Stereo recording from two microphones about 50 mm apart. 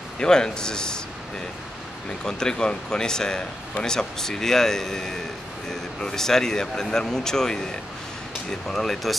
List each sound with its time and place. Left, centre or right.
0.2 s speech: centre
2.0 s speech: centre